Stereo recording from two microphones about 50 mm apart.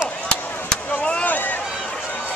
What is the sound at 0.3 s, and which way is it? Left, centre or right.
Chop, left.